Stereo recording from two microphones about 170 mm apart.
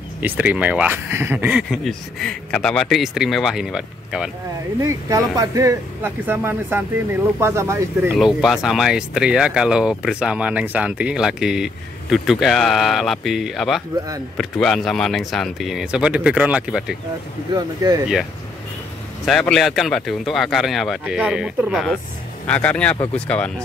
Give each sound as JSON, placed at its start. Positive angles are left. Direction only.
{"t": 0.2, "sound": "speech", "side_deg": -10}
{"t": 4.7, "sound": "speech", "side_deg": -20}
{"t": 8.6, "sound": "speech", "side_deg": 0}
{"t": 17.6, "sound": "speech", "side_deg": -25}
{"t": 19.2, "sound": "speech", "side_deg": 5}